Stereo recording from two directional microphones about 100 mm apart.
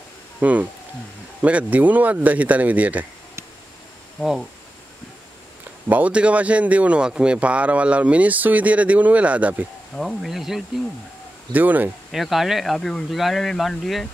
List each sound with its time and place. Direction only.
0.4 s speech: 15° right (ahead or behind)
4.2 s speech: centre (ahead or behind)
5.9 s speech: 15° right (ahead or behind)
9.9 s speech: centre (ahead or behind)
11.5 s speech: 15° right (ahead or behind)
12.1 s speech: centre (ahead or behind)